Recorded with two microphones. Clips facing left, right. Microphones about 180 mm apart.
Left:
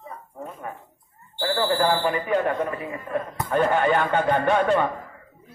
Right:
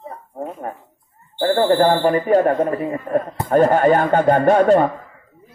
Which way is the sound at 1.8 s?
45° right (ahead or behind).